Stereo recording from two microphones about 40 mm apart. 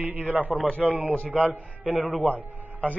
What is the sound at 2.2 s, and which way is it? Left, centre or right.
Speech, right.